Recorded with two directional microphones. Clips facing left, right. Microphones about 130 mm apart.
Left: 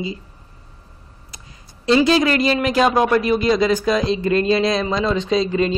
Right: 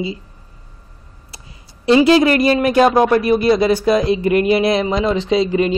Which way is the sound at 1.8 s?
25° right (ahead or behind).